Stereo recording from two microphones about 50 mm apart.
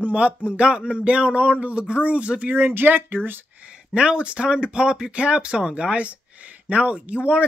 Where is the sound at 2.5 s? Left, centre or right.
Right.